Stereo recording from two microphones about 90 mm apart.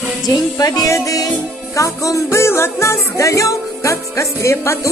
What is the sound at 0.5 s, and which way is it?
Music, 40° left (ahead or behind).